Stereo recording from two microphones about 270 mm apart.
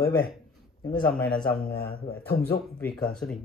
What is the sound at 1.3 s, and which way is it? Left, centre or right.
Speech, centre.